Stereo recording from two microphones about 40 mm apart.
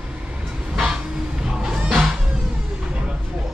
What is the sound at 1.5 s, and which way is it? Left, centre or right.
Music, centre.